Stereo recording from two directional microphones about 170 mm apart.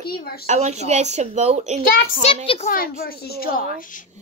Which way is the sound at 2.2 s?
40° left (ahead or behind).